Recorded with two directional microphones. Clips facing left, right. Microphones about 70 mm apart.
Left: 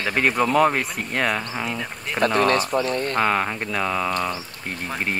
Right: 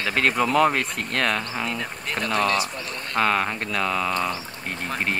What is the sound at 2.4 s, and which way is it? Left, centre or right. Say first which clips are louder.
Speech: left 5 dB; left.